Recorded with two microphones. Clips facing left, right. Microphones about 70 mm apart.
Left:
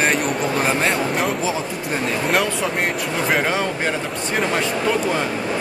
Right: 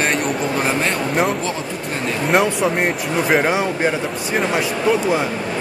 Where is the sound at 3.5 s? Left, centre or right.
Centre.